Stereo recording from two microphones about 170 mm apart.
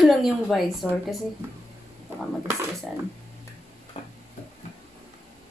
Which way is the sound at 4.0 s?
35° left (ahead or behind).